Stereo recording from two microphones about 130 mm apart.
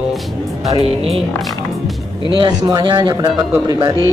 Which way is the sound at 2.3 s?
35° right (ahead or behind).